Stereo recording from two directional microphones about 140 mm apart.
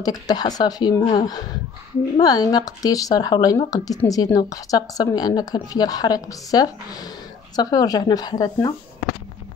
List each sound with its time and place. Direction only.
0.0 s a woman's voice: 30° left (ahead or behind)